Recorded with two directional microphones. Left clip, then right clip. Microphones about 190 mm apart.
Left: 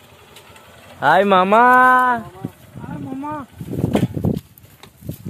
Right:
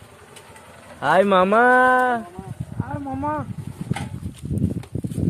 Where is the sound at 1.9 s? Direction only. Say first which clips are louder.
Left 4 dB; 30° left (ahead or behind).